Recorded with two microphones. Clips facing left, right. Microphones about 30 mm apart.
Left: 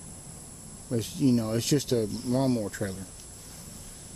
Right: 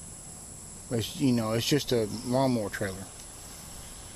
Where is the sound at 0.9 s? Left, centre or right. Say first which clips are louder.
Left 2 dB; centre.